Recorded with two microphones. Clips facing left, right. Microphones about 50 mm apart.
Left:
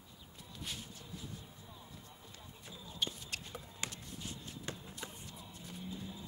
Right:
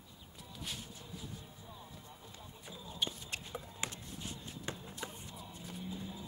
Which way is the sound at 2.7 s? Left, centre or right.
Centre.